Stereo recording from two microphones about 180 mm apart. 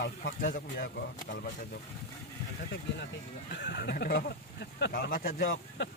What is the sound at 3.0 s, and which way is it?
A man's voice, 70° left (ahead or behind).